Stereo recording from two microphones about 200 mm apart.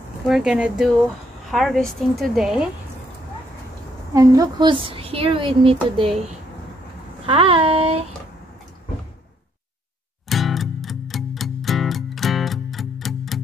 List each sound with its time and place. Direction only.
0.3 s a woman's voice: 5° right (ahead or behind)
4.1 s a woman's voice: 15° right (ahead or behind)
7.2 s a woman's voice: 25° right (ahead or behind)
10.3 s music: centre (ahead or behind)